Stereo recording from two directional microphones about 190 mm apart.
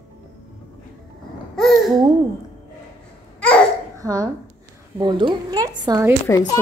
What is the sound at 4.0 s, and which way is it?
A child's voice, 20° right (ahead or behind).